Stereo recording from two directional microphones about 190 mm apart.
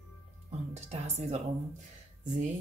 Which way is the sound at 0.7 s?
35° right (ahead or behind).